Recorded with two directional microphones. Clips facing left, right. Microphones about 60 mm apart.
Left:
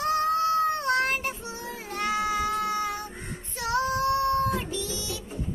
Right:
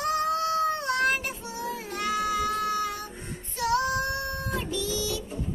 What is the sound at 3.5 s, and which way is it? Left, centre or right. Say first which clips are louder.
Female singing: right 2 dB; left.